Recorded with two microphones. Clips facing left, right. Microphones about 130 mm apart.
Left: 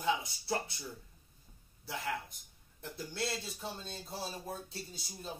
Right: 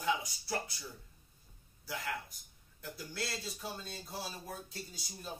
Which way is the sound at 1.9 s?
25° left (ahead or behind).